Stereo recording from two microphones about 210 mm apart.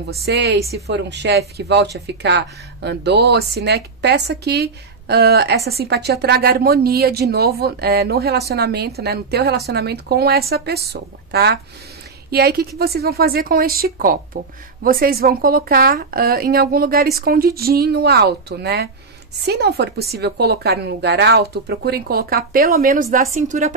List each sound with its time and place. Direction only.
0.1 s a woman's voice: 50° right (ahead or behind)